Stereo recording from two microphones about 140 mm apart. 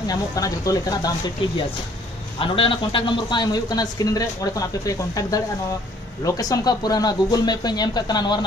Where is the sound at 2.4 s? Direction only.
40° left (ahead or behind).